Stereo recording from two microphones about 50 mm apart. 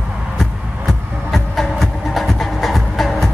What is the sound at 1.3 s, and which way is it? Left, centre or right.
Music, centre.